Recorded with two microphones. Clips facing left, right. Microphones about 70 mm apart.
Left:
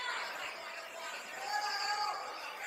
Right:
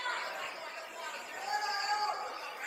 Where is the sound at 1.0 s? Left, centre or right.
Right.